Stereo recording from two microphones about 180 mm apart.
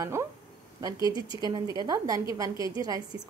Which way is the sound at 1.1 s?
30° left (ahead or behind).